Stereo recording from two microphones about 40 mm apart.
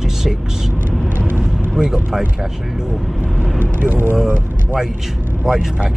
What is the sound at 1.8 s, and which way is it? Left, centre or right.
Speech, centre.